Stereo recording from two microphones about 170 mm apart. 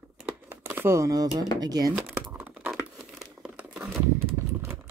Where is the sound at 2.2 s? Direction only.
10° right (ahead or behind).